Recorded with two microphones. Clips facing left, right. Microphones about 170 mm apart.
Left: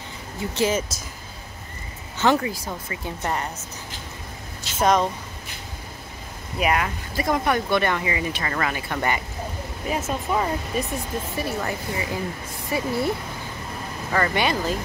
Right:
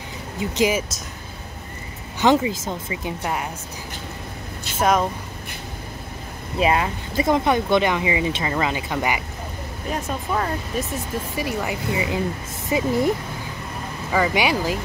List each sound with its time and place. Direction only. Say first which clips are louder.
0.4 s speech: right 2 dB; 15° right (ahead or behind)
2.1 s speech: right 3 dB; 15° right (ahead or behind)
4.7 s speech: even; 5° right (ahead or behind)
6.6 s speech: right 3 dB; 25° right (ahead or behind)
9.8 s speech: left 1 dB; 5° left (ahead or behind)
11.3 s speech: right 2 dB; 15° right (ahead or behind)
14.1 s speech: right 2 dB; 10° right (ahead or behind)